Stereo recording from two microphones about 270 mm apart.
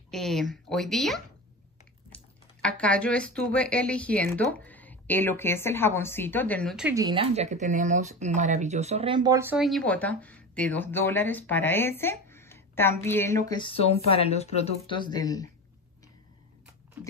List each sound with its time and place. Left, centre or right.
0.1 s speech: centre
6.9 s speech: centre
9.6 s speech: centre